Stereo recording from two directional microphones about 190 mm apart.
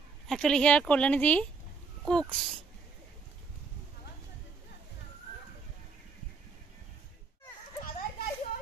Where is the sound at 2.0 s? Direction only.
5° left (ahead or behind).